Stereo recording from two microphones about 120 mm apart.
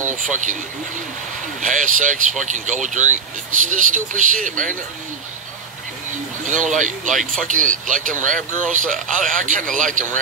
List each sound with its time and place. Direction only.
0.1 s speech: 90° right
1.6 s speech: 90° right
6.4 s speech: 90° right
8.6 s a man's voice: 5° left (ahead or behind)
9.3 s speech: 90° right